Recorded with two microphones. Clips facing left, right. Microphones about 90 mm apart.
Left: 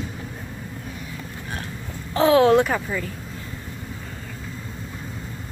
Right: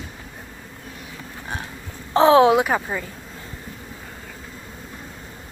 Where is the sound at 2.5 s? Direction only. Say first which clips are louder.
Left 1 dB; 10° right (ahead or behind).